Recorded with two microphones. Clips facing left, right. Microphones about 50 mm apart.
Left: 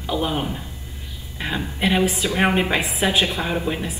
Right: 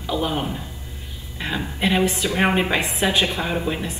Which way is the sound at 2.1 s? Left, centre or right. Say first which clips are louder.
Even; centre.